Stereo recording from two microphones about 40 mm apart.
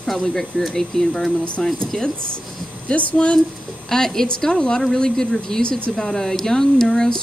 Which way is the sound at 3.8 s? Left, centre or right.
Centre.